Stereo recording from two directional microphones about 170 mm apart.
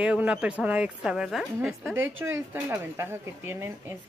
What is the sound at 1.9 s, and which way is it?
Speech, 15° right (ahead or behind).